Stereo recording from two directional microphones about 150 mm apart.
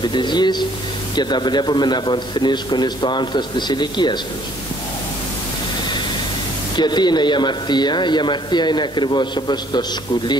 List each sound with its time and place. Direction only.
0.0 s speech: 30° left (ahead or behind)
6.8 s speech: 30° left (ahead or behind)